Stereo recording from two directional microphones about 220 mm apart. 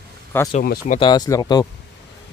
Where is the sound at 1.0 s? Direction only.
20° left (ahead or behind).